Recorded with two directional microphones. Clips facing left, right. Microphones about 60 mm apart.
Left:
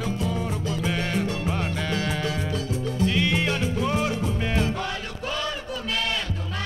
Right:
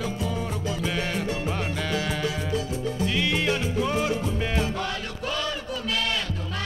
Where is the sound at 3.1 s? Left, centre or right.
Centre.